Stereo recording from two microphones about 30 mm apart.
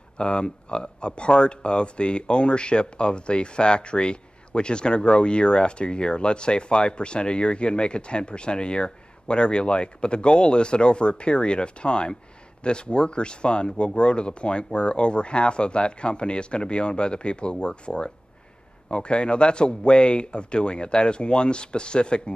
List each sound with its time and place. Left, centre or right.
0.2 s speech: left